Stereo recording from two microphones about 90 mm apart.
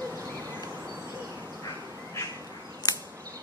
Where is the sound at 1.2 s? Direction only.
40° right (ahead or behind).